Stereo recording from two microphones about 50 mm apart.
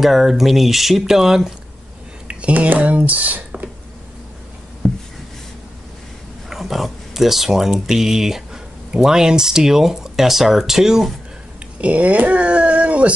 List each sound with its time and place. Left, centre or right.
0.0 s speech: centre
2.2 s speech: right
6.5 s speech: centre
11.8 s a sound: right